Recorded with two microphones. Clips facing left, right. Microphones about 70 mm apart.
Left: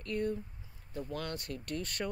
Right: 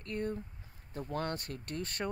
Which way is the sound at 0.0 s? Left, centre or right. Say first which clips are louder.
Left 2 dB; right.